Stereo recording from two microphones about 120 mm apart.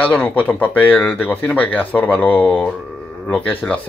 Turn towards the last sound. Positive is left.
turn(degrees=15)  # may be behind; listen again after turning